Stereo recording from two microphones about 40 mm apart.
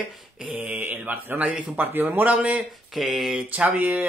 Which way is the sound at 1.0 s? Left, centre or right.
Right.